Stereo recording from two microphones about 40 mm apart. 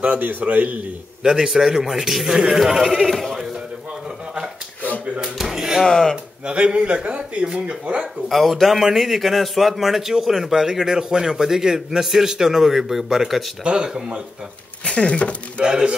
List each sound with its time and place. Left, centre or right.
0.0 s a man's voice: right
1.2 s speech: centre
3.0 s speech: centre
5.2 s a sound: centre
5.9 s speech: centre
6.4 s speech: right
8.3 s speech: centre
13.7 s speech: centre
14.9 s speech: left
15.6 s speech: right